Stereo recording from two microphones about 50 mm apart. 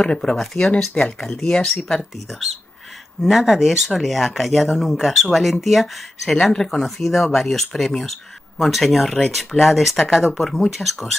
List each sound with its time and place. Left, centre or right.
0.0 s speech: centre
3.2 s speech: centre